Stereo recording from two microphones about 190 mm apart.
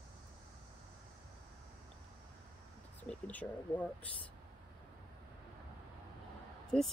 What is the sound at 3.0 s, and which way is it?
Speech, 10° left (ahead or behind).